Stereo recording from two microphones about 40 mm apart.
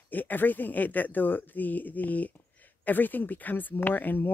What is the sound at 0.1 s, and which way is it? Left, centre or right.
Speech, left.